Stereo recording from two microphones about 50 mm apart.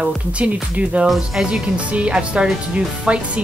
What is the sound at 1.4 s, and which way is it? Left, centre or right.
Speech, right.